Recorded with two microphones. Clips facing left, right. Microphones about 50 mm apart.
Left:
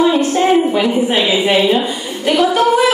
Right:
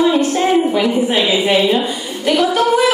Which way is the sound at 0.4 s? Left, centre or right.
Centre.